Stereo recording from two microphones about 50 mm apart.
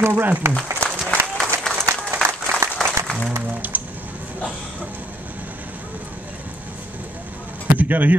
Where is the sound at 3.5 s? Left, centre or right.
Right.